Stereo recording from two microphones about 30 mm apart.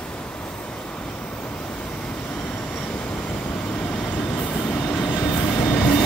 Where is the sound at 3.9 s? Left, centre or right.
Left.